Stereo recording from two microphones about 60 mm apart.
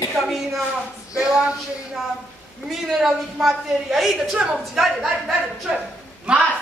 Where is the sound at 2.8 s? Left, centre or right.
Centre.